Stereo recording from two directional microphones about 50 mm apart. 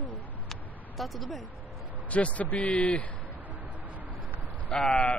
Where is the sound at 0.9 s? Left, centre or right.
Centre.